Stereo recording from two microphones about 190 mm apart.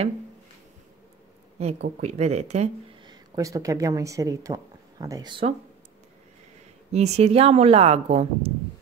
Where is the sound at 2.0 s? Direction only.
35° right (ahead or behind).